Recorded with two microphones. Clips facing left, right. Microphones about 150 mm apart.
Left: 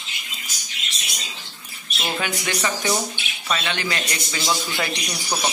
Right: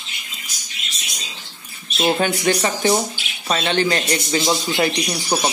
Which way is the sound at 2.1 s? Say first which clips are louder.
Right 8 dB; 35° right (ahead or behind).